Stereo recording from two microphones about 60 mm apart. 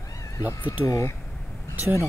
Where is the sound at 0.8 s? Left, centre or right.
Left.